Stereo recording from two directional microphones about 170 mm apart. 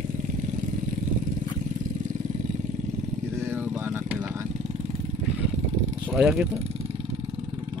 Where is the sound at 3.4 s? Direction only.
15° right (ahead or behind).